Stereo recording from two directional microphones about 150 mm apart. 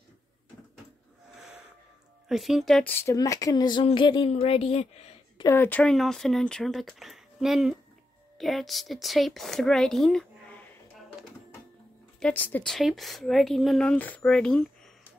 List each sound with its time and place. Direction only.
2.2 s speech: centre (ahead or behind)
2.9 s speech: 15° left (ahead or behind); by 5.2 s 45° left (ahead or behind)
5.4 s speech: 15° left (ahead or behind)
12.2 s a woman's voice: 10° left (ahead or behind)
12.7 s speech: centre (ahead or behind)